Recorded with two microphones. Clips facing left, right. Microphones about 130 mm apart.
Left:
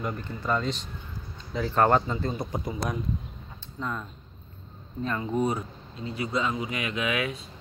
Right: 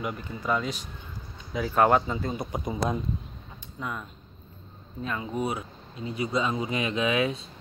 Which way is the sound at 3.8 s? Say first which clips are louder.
Left 2 dB; 10° right (ahead or behind).